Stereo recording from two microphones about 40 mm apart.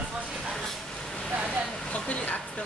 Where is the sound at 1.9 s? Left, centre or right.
Left.